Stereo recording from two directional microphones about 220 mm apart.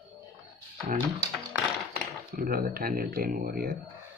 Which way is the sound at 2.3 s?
40° right (ahead or behind).